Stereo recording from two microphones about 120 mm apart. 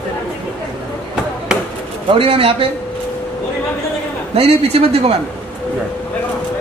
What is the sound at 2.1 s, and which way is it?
Speech, 50° right (ahead or behind).